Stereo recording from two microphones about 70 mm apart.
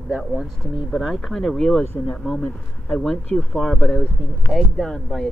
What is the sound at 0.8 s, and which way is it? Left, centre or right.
Speech, centre.